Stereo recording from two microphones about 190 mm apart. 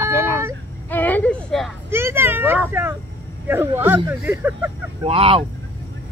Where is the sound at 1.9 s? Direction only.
10° right (ahead or behind).